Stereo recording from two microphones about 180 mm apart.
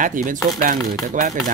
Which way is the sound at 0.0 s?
45° right (ahead or behind).